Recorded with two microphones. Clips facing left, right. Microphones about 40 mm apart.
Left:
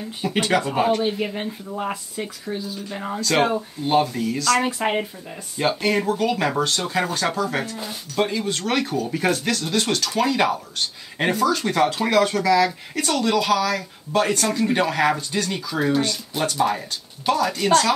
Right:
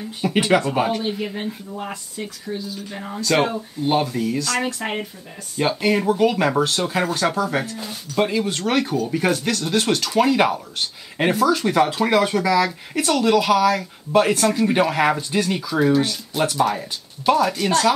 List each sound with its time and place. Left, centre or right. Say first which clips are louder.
0.3 s speech: right 3 dB; centre
0.6 s speech: left 1 dB; centre
3.3 s speech: right 1 dB; centre
4.6 s speech: left 3 dB; centre
5.6 s speech: right 1 dB; centre
6.0 s speech: right 4 dB; centre
6.3 s speech: right 2 dB; centre
8.3 s speech: right 3 dB; right
8.9 s speech: right 2 dB; centre
9.7 s speech: right 5 dB; centre
17.3 s speech: right 1 dB; centre